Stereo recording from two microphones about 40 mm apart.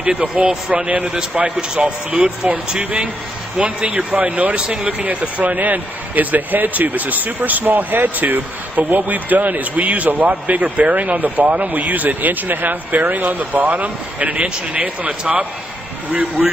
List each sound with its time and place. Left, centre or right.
0.0 s a man's voice: right
4.6 s a man's voice: right
4.9 s speech: right
5.6 s speech: right
16.4 s a man's voice: centre